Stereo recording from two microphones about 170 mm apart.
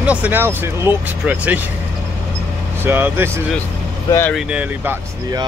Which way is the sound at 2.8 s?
10° right (ahead or behind).